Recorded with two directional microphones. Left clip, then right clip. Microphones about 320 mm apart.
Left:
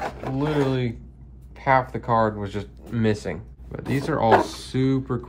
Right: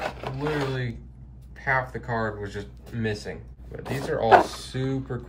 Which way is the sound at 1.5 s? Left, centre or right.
Left.